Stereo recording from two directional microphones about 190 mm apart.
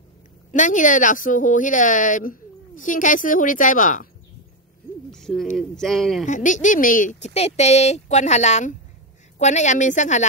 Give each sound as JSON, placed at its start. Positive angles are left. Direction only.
{"t": 0.5, "sound": "speech", "side_deg": 40}
{"t": 5.1, "sound": "speech", "side_deg": 0}
{"t": 6.2, "sound": "speech", "side_deg": 40}